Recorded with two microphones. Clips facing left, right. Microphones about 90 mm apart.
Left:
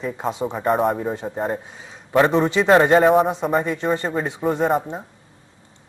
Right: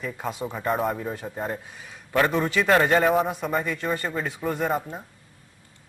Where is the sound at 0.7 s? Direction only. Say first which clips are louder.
Left 6 dB; centre (ahead or behind).